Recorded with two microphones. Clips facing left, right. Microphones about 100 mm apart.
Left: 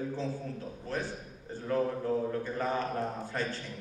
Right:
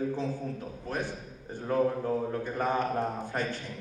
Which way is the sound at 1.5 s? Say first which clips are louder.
Right 3 dB; 20° right (ahead or behind).